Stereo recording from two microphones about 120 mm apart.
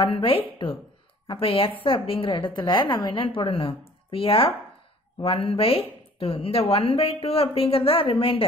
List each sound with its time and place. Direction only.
0.0 s speech: 45° left (ahead or behind)